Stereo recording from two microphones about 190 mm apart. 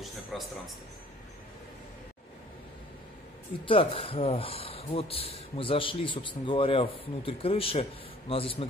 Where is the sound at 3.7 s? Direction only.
30° left (ahead or behind).